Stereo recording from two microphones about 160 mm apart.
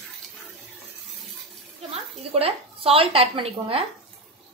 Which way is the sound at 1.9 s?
35° right (ahead or behind).